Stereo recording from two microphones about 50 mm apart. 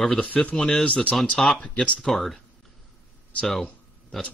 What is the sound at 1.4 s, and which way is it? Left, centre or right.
Speech, centre.